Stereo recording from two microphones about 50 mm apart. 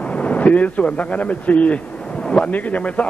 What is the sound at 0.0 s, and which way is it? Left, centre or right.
Speech, left.